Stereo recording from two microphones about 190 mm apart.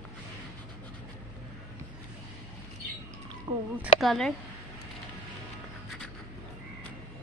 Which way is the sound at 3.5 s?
20° right (ahead or behind).